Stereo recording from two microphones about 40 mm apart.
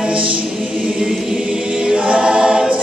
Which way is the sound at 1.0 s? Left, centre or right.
Right.